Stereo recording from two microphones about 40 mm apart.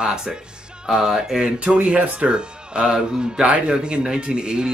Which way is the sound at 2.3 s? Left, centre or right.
Right.